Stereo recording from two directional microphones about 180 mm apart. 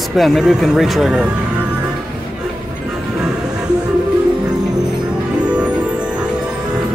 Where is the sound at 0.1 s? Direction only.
Centre (ahead or behind).